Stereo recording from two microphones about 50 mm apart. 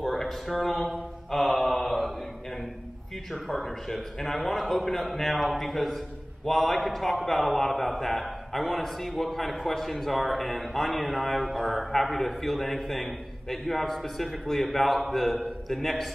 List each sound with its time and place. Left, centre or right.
0.0 s a sound: centre
1.6 s mantra: centre
3.4 s a man's voice: centre